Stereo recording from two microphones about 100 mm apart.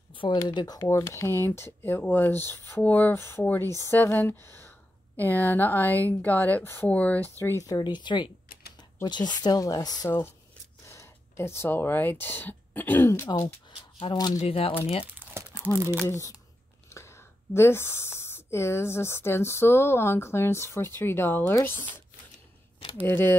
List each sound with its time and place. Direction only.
0.1 s speech: 55° left (ahead or behind); by 0.9 s 40° left (ahead or behind)
0.9 s speech: 25° left (ahead or behind)
7.6 s speech: 45° left (ahead or behind)
10.0 s speech: 25° left (ahead or behind)
13.7 s shuffling cards: 60° left (ahead or behind)
14.1 s speech: 40° left (ahead or behind)
14.4 s speech: 70° left (ahead or behind)
15.1 s crumpling: 20° right (ahead or behind)
16.1 s speech: 30° left (ahead or behind)
23.0 s speech: 20° left (ahead or behind)